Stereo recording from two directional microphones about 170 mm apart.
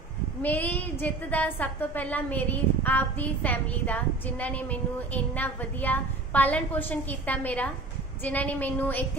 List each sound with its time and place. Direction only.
0.4 s a woman's voice: 10° left (ahead or behind)